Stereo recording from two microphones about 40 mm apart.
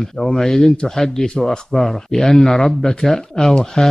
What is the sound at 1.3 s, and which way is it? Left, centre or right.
Speech, left.